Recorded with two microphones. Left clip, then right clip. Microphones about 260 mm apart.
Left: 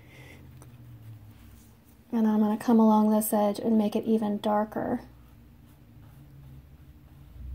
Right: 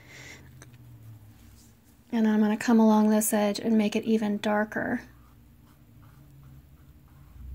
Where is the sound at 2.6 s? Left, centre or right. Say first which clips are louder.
Even; right.